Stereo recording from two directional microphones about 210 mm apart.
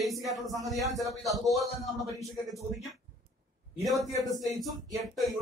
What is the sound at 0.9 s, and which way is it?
Speech, 15° right (ahead or behind).